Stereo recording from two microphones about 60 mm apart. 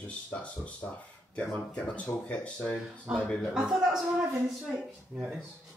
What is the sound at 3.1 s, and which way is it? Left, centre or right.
Speech, centre.